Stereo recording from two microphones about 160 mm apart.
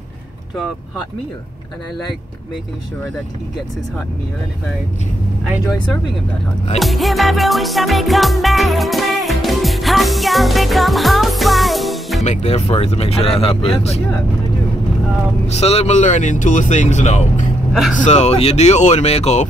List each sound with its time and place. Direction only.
6.8 s music: centre (ahead or behind)
12.2 s speech: 45° left (ahead or behind)
15.4 s speech: 40° left (ahead or behind)